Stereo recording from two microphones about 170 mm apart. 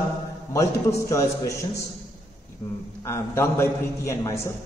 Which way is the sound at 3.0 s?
15° left (ahead or behind).